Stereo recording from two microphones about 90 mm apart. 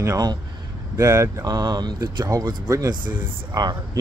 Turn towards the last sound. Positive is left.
turn(degrees=-50)  # may be behind; listen again after turning